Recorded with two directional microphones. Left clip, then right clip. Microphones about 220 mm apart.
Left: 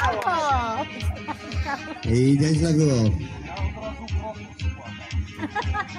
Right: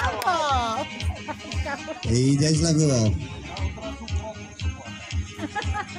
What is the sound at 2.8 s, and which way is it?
Speech, 50° right (ahead or behind).